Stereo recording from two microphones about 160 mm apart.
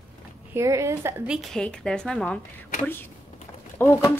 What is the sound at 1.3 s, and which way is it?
Speech, 5° left (ahead or behind).